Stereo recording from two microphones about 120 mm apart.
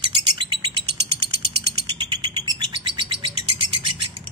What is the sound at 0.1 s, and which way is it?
Bird, 40° right (ahead or behind).